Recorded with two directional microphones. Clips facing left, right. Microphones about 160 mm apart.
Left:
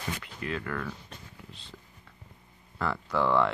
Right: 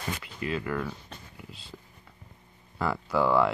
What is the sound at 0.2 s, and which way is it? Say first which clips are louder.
Speech: right 3 dB; 5° right (ahead or behind).